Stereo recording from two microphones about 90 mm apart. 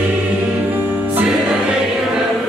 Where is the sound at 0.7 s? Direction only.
20° right (ahead or behind).